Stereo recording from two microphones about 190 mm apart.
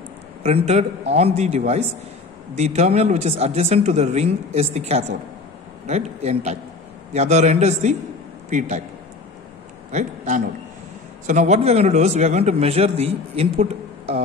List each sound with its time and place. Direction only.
0.4 s speech: 35° right (ahead or behind)
9.8 s a man's voice: 40° right (ahead or behind)